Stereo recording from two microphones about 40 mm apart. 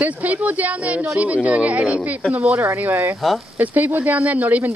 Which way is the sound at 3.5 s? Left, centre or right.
Right.